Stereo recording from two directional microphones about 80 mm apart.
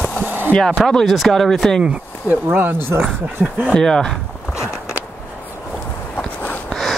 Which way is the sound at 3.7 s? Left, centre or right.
Centre.